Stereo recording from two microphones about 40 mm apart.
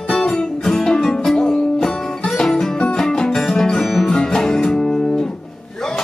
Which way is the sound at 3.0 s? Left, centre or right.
Centre.